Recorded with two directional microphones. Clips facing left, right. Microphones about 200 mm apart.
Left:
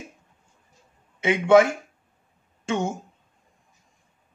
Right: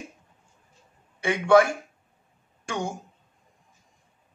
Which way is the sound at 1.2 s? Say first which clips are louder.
Left 2 dB; 20° left (ahead or behind).